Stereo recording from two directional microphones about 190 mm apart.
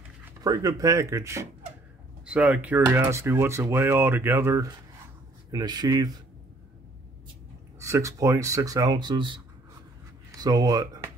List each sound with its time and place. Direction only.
0.2 s speech: 20° right (ahead or behind)
7.8 s speech: 15° right (ahead or behind)